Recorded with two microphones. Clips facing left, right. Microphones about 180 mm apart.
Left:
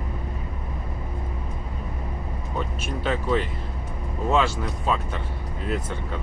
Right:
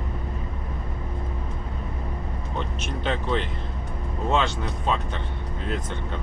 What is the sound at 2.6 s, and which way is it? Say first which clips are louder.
Speech: left 2 dB; 5° left (ahead or behind).